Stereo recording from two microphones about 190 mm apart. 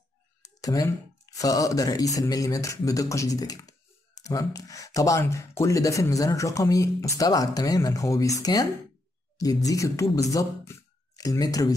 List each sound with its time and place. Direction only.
0.6 s speech: 20° left (ahead or behind)